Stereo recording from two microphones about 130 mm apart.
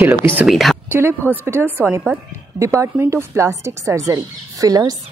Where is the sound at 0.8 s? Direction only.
15° right (ahead or behind).